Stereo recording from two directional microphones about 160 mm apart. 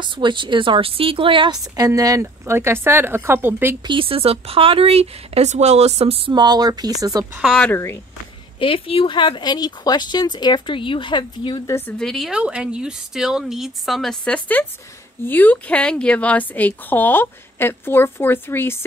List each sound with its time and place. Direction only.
0.0 s a woman's voice: 30° right (ahead or behind); by 3.7 s 15° right (ahead or behind)
3.8 s speech: 35° right (ahead or behind)
7.5 s a woman's voice: 10° left (ahead or behind)
8.5 s speech: 35° left (ahead or behind)
12.0 s a woman's voice: centre (ahead or behind)